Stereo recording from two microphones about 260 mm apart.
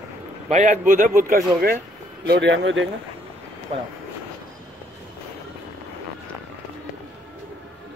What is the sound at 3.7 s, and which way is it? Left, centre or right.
Speech, right.